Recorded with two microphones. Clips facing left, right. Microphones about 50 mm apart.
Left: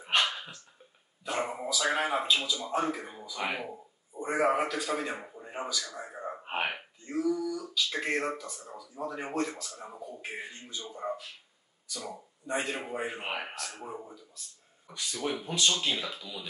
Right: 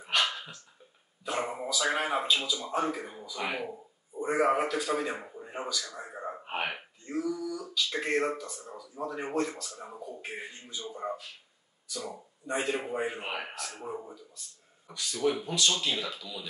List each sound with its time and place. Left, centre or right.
0.1 s dog: left
1.2 s a man's voice: centre
6.4 s a sound: centre
7.1 s male singing: centre
8.4 s speech: centre
12.4 s speech: centre
13.2 s speech: centre
13.6 s speech: centre
15.1 s speech: centre